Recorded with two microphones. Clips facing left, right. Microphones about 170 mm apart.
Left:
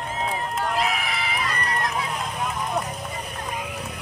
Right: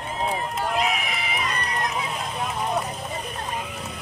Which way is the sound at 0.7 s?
20° right (ahead or behind).